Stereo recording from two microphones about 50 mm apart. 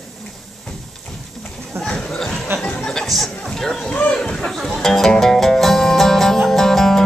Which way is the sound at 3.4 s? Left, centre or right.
Centre.